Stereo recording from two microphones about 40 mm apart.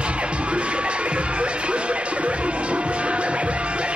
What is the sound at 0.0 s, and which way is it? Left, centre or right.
Music, right.